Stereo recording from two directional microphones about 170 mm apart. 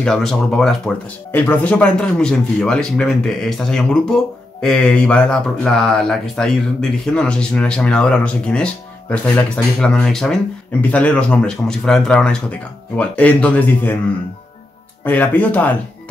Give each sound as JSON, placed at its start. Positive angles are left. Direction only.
{"t": 0.0, "sound": "speech", "side_deg": 5}
{"t": 15.0, "sound": "speech", "side_deg": 10}